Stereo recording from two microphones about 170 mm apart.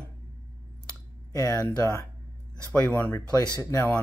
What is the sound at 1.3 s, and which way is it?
Speech, 20° left (ahead or behind).